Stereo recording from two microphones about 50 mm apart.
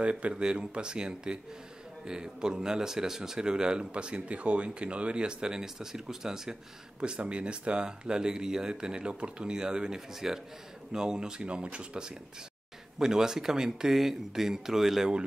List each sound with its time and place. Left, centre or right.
0.0 s speech: right
7.0 s speech: right